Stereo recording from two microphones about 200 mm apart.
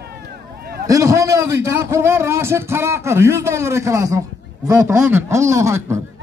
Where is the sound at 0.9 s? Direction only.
15° right (ahead or behind).